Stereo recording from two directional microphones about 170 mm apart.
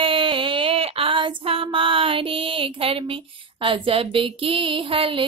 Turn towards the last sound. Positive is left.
turn(degrees=-30)  # may be behind; listen again after turning